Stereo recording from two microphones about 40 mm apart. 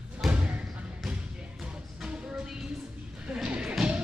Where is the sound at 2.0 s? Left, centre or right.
Right.